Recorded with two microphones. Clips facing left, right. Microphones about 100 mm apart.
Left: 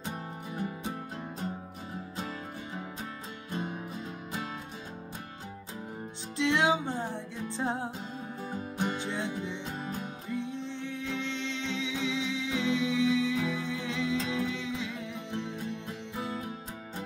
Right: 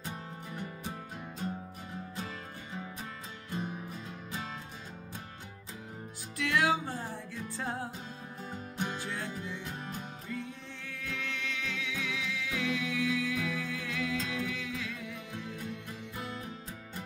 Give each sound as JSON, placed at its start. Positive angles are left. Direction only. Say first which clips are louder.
{"t": 6.3, "sound": "music", "louder": "left 3 dB", "side_deg": 25}